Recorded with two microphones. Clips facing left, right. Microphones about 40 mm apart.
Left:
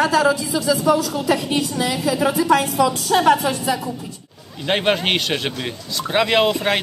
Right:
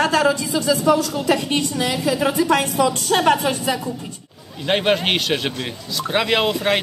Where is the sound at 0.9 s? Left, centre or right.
Centre.